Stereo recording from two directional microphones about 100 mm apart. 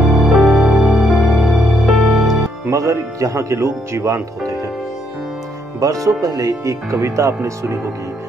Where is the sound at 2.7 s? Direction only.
35° right (ahead or behind).